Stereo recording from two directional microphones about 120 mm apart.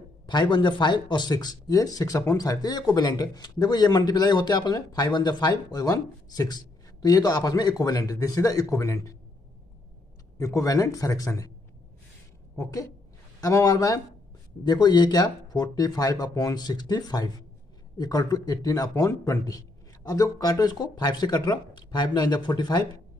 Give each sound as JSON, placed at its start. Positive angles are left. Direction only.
{"t": 0.3, "sound": "speech", "side_deg": 40}
{"t": 10.3, "sound": "a man's voice", "side_deg": 25}
{"t": 13.4, "sound": "a man's voice", "side_deg": 30}